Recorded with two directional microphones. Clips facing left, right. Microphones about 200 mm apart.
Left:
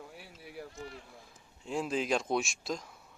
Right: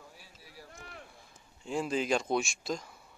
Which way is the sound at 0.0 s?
60° left (ahead or behind).